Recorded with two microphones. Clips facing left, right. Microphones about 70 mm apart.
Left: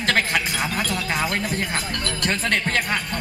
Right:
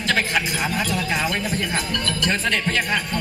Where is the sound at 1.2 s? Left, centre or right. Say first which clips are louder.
Even; left.